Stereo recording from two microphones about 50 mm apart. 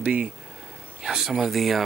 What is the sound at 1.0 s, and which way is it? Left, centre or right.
Speech, centre.